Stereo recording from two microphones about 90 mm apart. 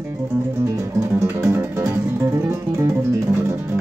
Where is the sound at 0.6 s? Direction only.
30° right (ahead or behind).